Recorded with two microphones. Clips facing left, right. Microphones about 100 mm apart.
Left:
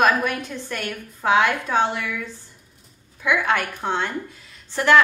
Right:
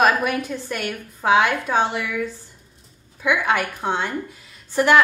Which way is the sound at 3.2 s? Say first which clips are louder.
Right 1 dB; 15° right (ahead or behind).